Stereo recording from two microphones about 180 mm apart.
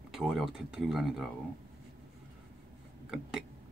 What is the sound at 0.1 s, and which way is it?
Speech, centre (ahead or behind).